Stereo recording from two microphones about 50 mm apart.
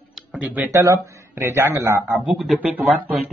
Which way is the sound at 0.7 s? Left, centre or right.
Right.